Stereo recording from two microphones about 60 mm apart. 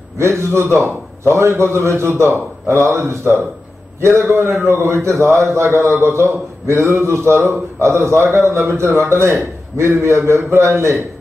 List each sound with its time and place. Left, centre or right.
0.2 s a man's voice: right